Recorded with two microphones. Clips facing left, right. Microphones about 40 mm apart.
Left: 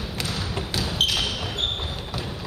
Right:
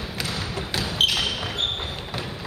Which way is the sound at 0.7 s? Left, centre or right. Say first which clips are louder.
Right 2 dB; centre.